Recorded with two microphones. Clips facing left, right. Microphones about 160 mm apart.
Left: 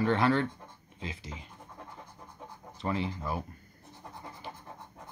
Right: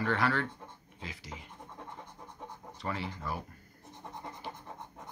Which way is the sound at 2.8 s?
20° left (ahead or behind).